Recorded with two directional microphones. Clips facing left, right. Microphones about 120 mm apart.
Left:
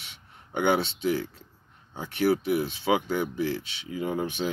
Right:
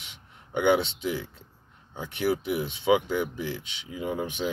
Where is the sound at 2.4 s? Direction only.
20° right (ahead or behind).